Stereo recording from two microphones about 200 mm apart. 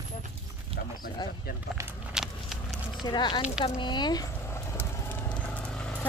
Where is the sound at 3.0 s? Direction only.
20° left (ahead or behind).